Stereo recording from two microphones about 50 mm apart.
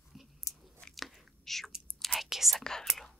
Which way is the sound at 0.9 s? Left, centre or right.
Centre.